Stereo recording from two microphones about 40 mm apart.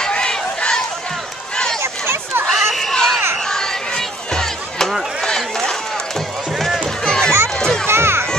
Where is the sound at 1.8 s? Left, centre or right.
Right.